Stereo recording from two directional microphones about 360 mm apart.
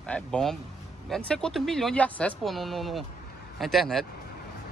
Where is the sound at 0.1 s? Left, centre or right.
Centre.